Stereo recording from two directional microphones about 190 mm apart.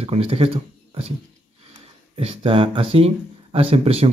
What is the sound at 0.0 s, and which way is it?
Speech, 30° right (ahead or behind).